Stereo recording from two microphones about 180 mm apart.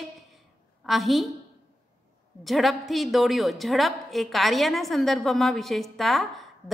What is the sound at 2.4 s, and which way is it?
A woman's voice, centre (ahead or behind).